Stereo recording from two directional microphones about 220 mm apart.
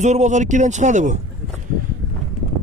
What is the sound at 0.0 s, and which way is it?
Speech, 30° right (ahead or behind).